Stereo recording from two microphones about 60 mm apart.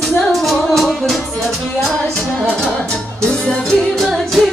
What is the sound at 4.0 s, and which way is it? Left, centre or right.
Music, centre.